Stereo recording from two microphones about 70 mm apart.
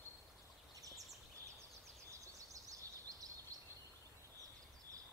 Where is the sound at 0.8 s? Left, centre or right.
Right.